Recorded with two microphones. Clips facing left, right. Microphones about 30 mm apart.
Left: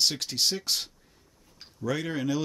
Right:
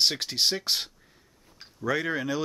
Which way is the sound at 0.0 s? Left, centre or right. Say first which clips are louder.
Right 2 dB; centre.